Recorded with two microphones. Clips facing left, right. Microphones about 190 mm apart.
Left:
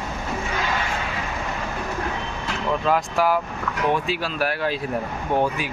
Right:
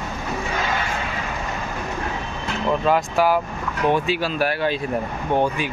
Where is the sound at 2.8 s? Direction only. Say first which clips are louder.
Right 2 dB; centre (ahead or behind).